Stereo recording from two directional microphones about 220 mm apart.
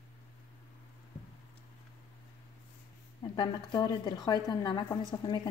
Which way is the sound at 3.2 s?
20° left (ahead or behind).